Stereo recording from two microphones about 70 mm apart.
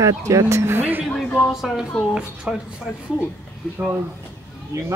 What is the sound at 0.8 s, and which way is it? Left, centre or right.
Speech, right.